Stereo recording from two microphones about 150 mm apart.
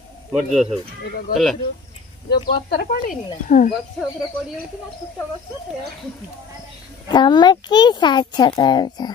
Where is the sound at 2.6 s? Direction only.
90° left.